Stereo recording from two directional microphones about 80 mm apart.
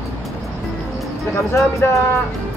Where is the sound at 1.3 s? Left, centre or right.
Left.